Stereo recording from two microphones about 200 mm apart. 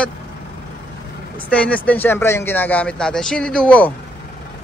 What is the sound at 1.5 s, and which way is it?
Speech, 5° left (ahead or behind).